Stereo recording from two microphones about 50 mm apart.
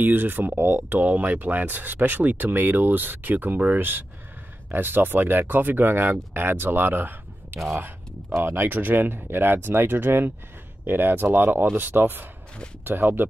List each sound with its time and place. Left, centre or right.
0.0 s speech: right